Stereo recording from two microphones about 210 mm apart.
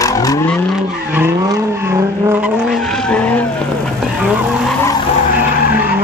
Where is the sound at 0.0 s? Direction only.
15° left (ahead or behind).